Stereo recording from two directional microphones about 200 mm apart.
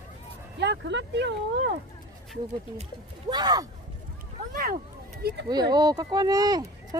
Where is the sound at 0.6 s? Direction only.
60° right (ahead or behind).